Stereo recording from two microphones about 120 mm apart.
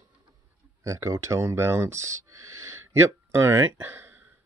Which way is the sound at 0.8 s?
25° right (ahead or behind).